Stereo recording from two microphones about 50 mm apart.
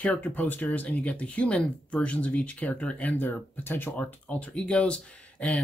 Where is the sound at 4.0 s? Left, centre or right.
Left.